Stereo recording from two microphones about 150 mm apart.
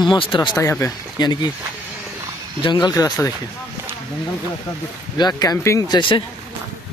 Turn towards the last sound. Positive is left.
turn(degrees=35)  # may be behind; listen again after turning